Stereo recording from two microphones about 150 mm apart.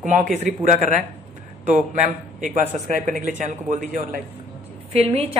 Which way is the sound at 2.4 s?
55° right (ahead or behind).